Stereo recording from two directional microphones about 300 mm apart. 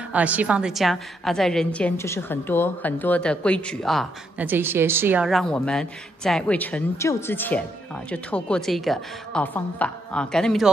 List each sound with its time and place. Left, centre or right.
0.1 s a woman's voice: centre